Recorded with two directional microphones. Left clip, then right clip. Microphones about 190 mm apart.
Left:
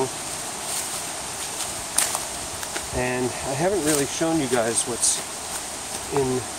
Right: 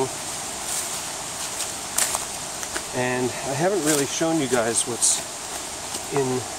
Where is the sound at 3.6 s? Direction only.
10° right (ahead or behind).